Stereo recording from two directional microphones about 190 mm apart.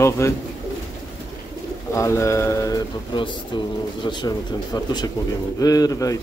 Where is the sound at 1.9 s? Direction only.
15° left (ahead or behind).